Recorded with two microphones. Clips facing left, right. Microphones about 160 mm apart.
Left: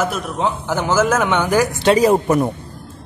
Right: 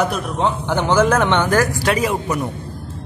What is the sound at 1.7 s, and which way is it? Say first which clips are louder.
Speech: left 6 dB; 30° left (ahead or behind).